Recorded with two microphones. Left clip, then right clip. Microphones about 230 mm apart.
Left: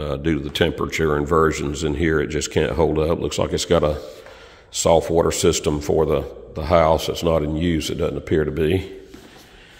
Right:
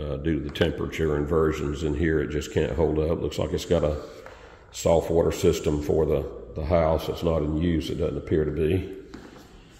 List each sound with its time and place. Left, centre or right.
0.0 s a man's voice: left